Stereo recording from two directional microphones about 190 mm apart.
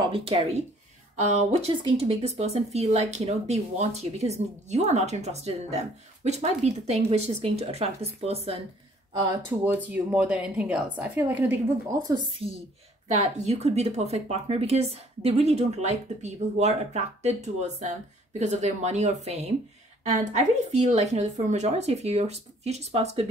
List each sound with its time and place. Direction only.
0.0 s a woman's voice: 30° right (ahead or behind)
9.5 s speech: 10° right (ahead or behind)
12.1 s a woman's voice: 25° right (ahead or behind)